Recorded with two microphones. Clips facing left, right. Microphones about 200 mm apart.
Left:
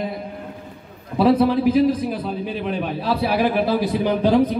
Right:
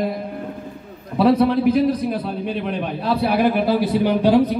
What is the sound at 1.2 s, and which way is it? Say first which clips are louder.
A man's voice: right 1 dB; centre (ahead or behind).